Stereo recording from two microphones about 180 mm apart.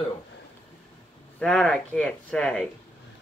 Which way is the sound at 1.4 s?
5° left (ahead or behind).